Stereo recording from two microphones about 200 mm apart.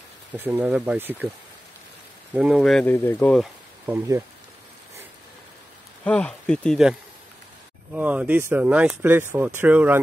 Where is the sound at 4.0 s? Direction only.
15° right (ahead or behind).